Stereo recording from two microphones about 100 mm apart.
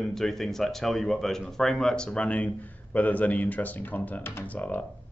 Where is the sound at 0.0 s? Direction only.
5° left (ahead or behind).